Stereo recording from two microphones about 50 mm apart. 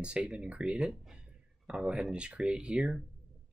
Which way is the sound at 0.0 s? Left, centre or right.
Right.